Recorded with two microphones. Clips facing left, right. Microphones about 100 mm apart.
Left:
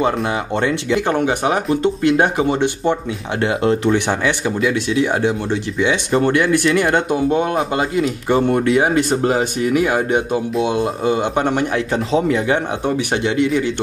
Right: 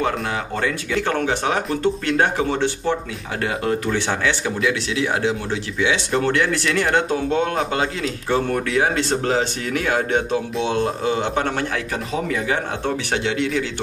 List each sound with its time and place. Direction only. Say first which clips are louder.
0.6 s speech: left 6 dB; 20° left (ahead or behind)
4.5 s speech: left 4 dB; centre (ahead or behind)
5.8 s speech: left 3 dB; 10° left (ahead or behind)